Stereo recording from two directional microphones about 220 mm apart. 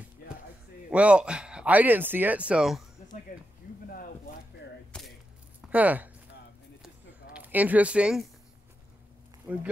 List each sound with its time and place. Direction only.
0.9 s speech: 5° right (ahead or behind)
4.9 s a sound: 5° left (ahead or behind)
5.6 s speech: 5° right (ahead or behind)
7.3 s speech: 5° right (ahead or behind)
9.5 s speech: 10° right (ahead or behind)